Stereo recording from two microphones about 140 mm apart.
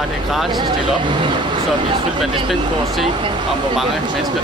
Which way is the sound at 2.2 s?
Centre (ahead or behind).